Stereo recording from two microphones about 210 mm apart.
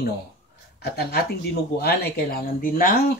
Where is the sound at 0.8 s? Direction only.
50° left (ahead or behind).